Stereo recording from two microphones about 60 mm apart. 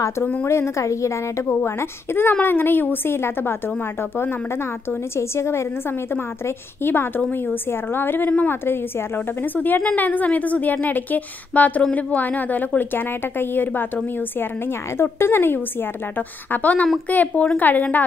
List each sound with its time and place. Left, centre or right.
0.5 s a woman's voice: left
1.5 s a woman's voice: left
5.1 s a woman's voice: left
6.4 s a woman's voice: left
7.2 s speech: left
7.9 s a woman's voice: left
15.0 s a woman's voice: left